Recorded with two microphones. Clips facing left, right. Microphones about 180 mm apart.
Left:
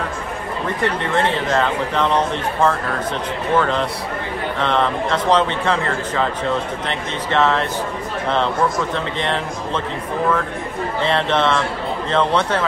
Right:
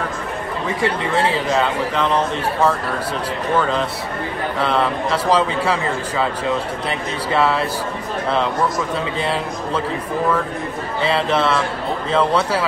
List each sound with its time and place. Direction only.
0.7 s speech: 5° right (ahead or behind)
8.9 s speech: 10° right (ahead or behind)
11.0 s speech: 5° right (ahead or behind)